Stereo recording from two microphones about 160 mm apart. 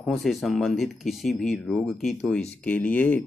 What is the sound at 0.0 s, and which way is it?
Speech, centre (ahead or behind).